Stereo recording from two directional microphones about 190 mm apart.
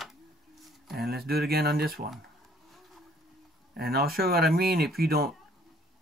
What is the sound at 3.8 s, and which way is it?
Speech, 55° right (ahead or behind).